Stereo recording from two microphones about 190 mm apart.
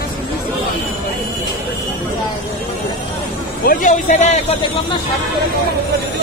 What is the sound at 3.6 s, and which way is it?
Speech, 45° left (ahead or behind).